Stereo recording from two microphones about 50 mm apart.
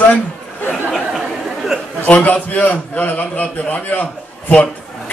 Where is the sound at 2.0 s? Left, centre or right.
Left.